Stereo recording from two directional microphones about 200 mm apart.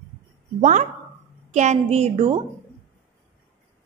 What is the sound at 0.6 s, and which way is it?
A woman's voice, 35° right (ahead or behind).